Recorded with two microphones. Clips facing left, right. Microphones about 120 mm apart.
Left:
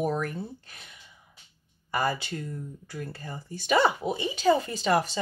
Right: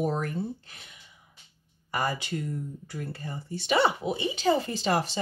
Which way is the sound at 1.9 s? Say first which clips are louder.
Left 2 dB; 25° right (ahead or behind).